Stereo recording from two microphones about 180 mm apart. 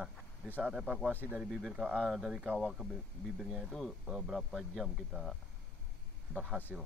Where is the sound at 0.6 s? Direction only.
5° right (ahead or behind).